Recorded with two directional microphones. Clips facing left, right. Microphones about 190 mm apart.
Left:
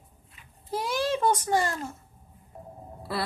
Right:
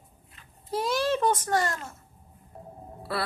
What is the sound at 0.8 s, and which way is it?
A child's voice, 15° left (ahead or behind).